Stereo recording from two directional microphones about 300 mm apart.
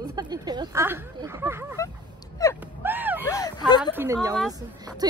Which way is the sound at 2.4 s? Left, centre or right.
Centre.